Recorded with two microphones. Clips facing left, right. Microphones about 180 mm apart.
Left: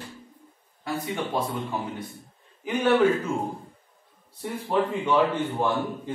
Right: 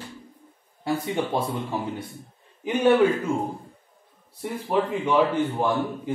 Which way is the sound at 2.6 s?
20° right (ahead or behind).